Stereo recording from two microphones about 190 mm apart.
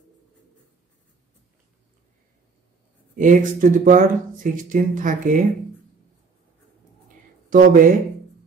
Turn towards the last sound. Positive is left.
turn(degrees=-45)  # may be behind; listen again after turning